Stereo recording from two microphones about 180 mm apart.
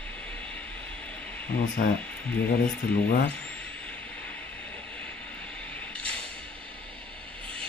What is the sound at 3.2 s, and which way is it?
Vehicle, 5° left (ahead or behind).